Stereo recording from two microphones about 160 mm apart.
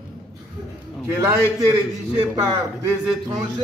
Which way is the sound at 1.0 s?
15° right (ahead or behind).